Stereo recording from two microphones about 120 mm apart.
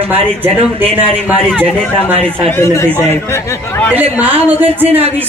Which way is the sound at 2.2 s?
20° left (ahead or behind).